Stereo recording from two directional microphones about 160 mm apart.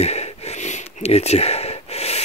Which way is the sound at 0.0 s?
40° left (ahead or behind).